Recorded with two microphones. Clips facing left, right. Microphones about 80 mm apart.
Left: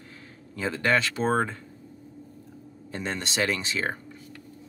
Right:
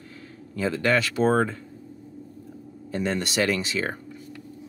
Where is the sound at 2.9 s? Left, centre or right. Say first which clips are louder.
Right 5 dB; left.